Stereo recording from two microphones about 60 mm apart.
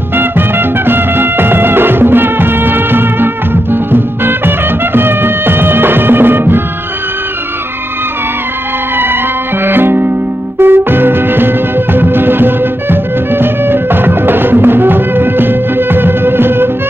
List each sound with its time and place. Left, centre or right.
0.1 s music: right
8.9 s music: right